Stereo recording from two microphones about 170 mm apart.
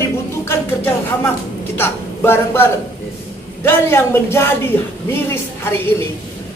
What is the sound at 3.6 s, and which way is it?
Speech, 15° left (ahead or behind).